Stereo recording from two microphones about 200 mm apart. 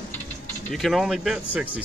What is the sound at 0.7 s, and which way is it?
Speech, centre (ahead or behind).